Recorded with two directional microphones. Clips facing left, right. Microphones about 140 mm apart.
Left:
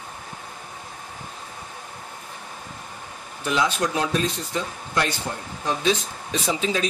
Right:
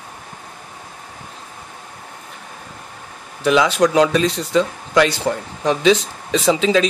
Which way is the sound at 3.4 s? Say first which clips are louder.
Right 9 dB; 90° right.